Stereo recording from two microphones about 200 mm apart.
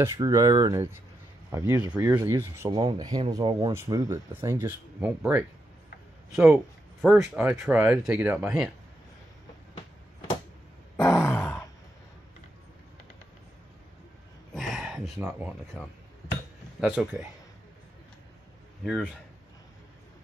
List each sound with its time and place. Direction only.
0.0 s speech: 15° right (ahead or behind)
2.7 s speech: 25° right (ahead or behind); by 8.6 s 5° right (ahead or behind)
11.0 s grunt: 10° left (ahead or behind)
14.5 s a sound: centre (ahead or behind)
16.8 s speech: 10° right (ahead or behind)